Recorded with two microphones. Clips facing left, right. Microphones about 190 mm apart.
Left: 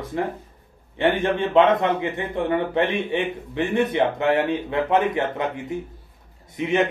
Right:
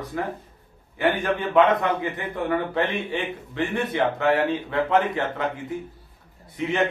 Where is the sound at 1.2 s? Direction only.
25° left (ahead or behind).